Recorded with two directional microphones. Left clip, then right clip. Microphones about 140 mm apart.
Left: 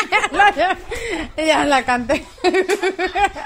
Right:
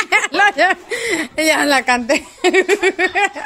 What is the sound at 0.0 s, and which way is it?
Speech, 25° right (ahead or behind).